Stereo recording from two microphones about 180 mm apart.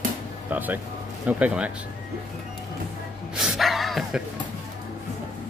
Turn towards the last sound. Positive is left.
turn(degrees=0)  # may be behind; listen again after turning